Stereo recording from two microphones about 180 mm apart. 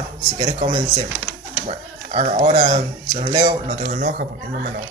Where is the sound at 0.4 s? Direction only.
25° right (ahead or behind).